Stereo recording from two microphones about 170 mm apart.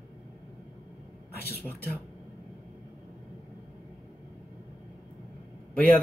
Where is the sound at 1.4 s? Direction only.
70° left (ahead or behind).